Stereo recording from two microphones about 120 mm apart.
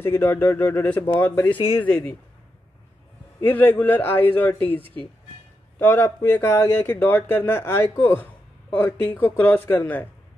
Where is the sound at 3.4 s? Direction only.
15° left (ahead or behind).